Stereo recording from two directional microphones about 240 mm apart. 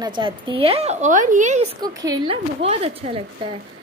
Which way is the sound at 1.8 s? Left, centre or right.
Centre.